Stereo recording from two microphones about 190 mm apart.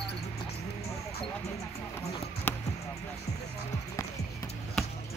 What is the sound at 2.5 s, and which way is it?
Basketball bounce, 10° left (ahead or behind).